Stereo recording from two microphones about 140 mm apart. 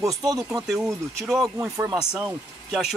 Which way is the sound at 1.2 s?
Centre (ahead or behind).